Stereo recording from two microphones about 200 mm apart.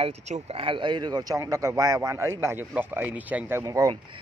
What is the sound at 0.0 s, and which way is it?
Speech, 30° right (ahead or behind).